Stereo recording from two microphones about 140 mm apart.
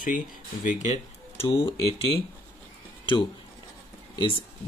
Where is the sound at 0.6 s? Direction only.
55° left (ahead or behind).